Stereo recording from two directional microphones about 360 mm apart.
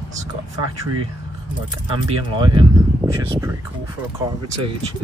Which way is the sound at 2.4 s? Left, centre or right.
Centre.